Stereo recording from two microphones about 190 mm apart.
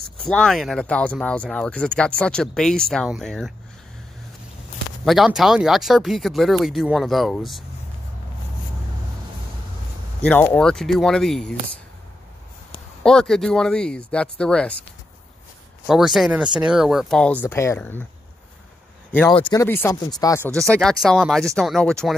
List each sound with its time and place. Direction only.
0.2 s speech: 5° left (ahead or behind)
5.0 s speech: centre (ahead or behind)
10.2 s speech: 10° left (ahead or behind)
13.0 s speech: 5° left (ahead or behind)
15.9 s speech: centre (ahead or behind)
19.3 s speech: 25° left (ahead or behind)
19.6 s speech: 15° left (ahead or behind)
20.5 s speech: 5° left (ahead or behind)